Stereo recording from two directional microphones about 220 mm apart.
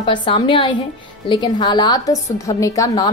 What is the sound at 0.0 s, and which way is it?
A woman's voice, 20° left (ahead or behind).